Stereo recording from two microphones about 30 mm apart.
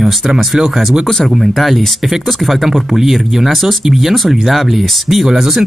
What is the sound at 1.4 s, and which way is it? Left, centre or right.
Speech, centre.